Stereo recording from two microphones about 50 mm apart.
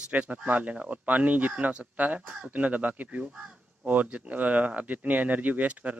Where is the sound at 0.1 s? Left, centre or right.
Right.